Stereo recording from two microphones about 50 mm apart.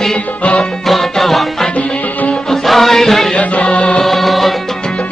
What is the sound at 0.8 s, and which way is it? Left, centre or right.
Music, centre.